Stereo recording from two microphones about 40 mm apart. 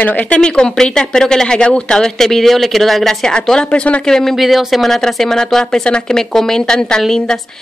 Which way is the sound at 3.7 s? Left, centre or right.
Left.